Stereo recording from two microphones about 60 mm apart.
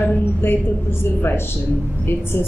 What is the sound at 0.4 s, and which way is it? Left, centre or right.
Speech, left.